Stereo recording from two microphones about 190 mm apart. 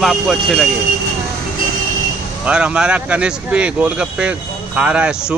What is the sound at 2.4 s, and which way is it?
Speech, 5° right (ahead or behind).